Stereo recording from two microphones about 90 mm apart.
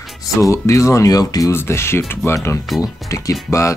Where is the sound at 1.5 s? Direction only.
30° left (ahead or behind).